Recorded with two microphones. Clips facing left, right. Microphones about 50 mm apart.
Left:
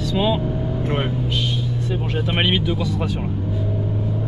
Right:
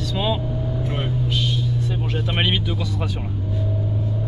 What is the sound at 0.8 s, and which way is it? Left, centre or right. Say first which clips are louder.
Speech: left 6 dB; left.